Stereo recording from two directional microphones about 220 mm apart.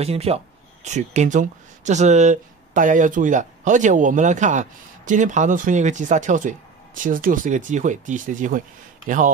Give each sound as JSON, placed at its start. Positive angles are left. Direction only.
{"t": 0.0, "sound": "speech", "side_deg": -30}